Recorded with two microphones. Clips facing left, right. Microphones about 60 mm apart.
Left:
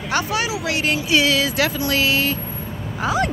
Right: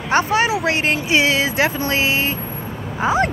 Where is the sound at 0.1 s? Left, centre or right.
Right.